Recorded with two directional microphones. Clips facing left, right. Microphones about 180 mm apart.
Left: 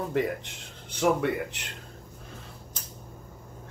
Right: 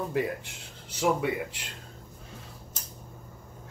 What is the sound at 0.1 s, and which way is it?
Speech, 10° right (ahead or behind).